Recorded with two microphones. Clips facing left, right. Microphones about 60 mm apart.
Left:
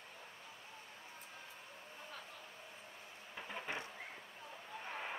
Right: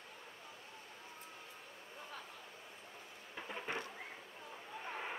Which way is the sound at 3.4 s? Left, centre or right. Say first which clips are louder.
Right 2 dB; centre.